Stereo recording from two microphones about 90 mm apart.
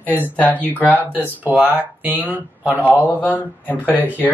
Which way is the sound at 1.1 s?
20° right (ahead or behind).